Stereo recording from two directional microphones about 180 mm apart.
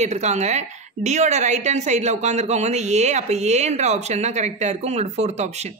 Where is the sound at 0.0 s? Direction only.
40° right (ahead or behind).